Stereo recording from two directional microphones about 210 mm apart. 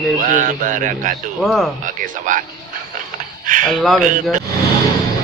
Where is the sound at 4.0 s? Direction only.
40° right (ahead or behind).